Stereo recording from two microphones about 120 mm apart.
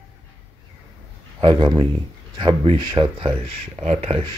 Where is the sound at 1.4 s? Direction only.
45° right (ahead or behind).